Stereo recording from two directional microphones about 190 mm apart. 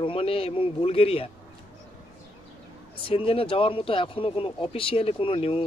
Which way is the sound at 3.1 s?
30° left (ahead or behind).